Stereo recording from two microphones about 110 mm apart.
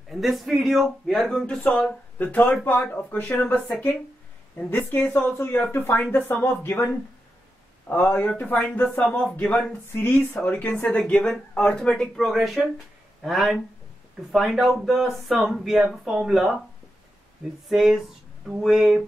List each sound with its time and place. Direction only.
0.1 s speech: centre (ahead or behind)
17.6 s speech: centre (ahead or behind)